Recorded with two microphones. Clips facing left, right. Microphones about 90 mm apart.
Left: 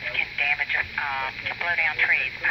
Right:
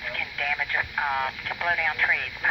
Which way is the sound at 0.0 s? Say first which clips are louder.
Left 1 dB; 25° right (ahead or behind).